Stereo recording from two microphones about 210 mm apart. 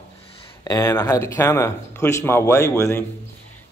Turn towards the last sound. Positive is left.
turn(degrees=15)  # may be behind; listen again after turning